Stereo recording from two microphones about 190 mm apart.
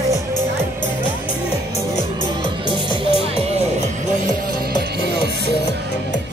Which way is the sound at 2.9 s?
30° left (ahead or behind).